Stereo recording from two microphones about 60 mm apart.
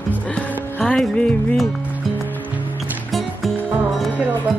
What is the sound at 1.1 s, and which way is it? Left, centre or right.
Speech, centre.